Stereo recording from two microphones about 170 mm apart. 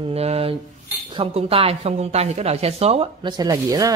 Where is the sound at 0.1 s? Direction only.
35° right (ahead or behind).